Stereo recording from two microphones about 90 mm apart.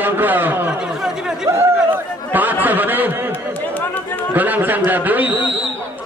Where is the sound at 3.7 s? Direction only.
20° left (ahead or behind).